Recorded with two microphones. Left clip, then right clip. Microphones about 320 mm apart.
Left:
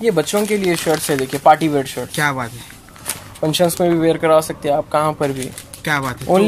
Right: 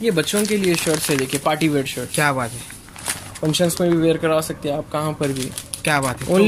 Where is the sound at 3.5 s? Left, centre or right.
Left.